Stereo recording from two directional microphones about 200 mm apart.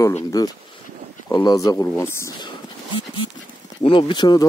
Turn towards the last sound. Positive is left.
turn(degrees=20)  # may be behind; listen again after turning